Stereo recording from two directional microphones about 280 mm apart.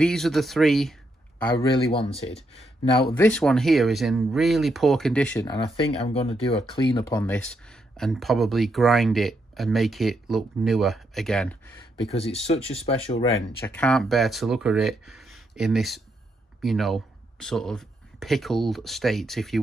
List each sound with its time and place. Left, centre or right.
0.0 s speech: centre
1.9 s speech: centre
3.3 s speech: centre
5.7 s speech: centre
12.1 s speech: left
13.7 s speech: centre